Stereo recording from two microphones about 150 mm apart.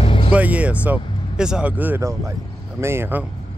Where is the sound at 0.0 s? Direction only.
35° left (ahead or behind).